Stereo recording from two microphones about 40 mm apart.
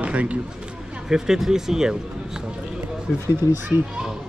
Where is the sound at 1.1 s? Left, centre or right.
Centre.